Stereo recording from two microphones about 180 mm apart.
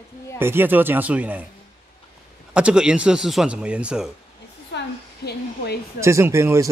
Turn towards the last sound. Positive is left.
turn(degrees=-15)  # may be behind; listen again after turning